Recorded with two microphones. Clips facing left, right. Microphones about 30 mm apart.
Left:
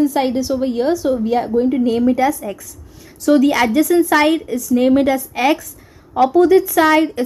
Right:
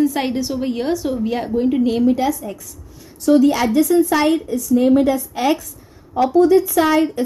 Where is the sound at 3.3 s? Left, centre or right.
Left.